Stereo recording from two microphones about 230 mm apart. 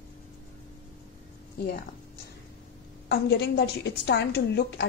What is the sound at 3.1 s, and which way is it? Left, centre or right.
A woman's voice, left.